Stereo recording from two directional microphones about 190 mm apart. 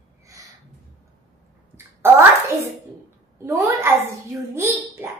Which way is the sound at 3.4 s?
15° right (ahead or behind).